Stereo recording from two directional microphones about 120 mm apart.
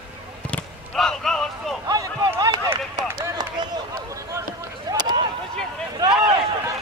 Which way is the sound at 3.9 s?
25° right (ahead or behind).